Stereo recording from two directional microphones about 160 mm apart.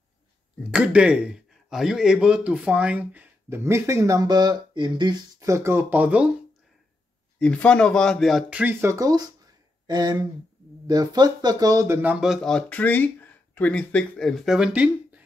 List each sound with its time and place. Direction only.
0.6 s speech: 5° right (ahead or behind)
7.3 s speech: 5° left (ahead or behind)